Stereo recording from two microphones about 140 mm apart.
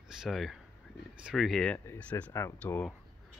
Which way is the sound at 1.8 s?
15° left (ahead or behind).